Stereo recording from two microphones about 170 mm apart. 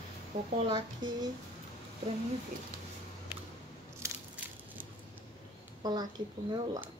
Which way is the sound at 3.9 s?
15° right (ahead or behind).